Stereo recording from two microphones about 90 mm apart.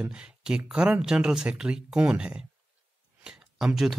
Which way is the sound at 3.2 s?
10° right (ahead or behind).